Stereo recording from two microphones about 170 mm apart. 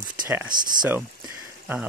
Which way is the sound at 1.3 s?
10° right (ahead or behind).